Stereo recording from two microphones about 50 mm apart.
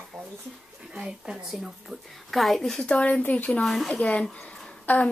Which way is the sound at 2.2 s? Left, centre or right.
Centre.